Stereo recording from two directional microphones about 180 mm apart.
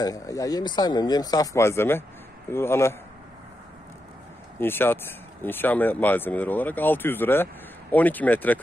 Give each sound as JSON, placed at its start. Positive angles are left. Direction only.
{"t": 0.0, "sound": "speech", "side_deg": 20}
{"t": 4.6, "sound": "speech", "side_deg": 10}